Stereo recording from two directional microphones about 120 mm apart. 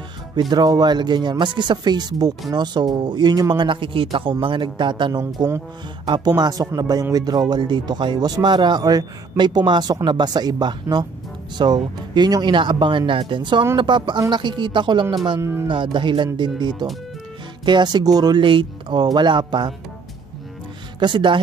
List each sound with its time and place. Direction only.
0.4 s speech: 35° right (ahead or behind)
21.0 s speech: 40° right (ahead or behind)